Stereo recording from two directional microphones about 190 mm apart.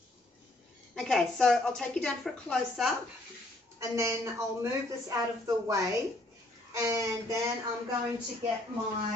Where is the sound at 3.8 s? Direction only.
15° right (ahead or behind).